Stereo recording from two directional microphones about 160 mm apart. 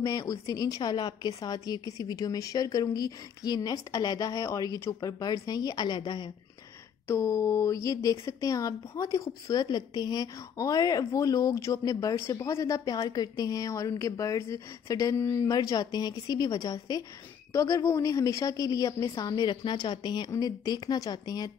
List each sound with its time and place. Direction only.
0.0 s speech: 25° left (ahead or behind)
7.1 s speech: 15° left (ahead or behind)